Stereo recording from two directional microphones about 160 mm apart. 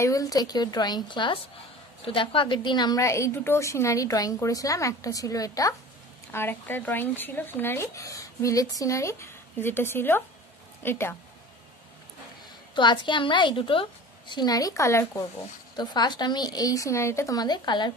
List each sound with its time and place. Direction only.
0.0 s a woman's voice: 20° left (ahead or behind)
12.7 s a woman's voice: 30° left (ahead or behind)